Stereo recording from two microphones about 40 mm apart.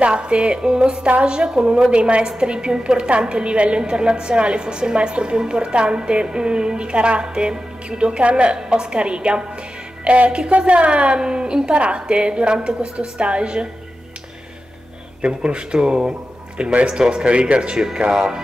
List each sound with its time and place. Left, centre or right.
0.0 s a woman's voice: right
8.5 s a woman's voice: centre
10.0 s music: right
10.6 s a woman's voice: right
15.2 s a woman's voice: right